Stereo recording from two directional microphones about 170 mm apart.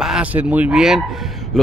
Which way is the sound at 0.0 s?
5° right (ahead or behind).